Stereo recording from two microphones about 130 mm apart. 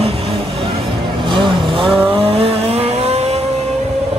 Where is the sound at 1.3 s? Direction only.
40° right (ahead or behind).